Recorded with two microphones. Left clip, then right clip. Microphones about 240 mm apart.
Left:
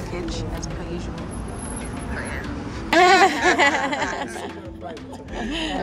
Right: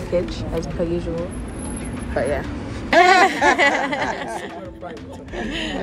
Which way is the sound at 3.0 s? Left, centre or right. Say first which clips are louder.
Right 1 dB; centre.